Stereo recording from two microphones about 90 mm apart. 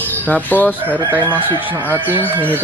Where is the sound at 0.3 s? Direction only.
20° left (ahead or behind).